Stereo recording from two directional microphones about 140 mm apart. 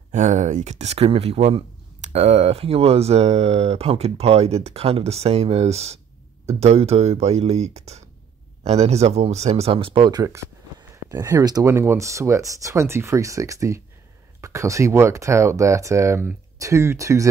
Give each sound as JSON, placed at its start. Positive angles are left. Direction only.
{"t": 0.1, "sound": "speech", "side_deg": -65}
{"t": 10.2, "sound": "speech", "side_deg": -25}